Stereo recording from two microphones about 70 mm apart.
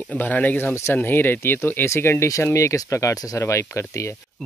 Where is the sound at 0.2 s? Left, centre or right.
Left.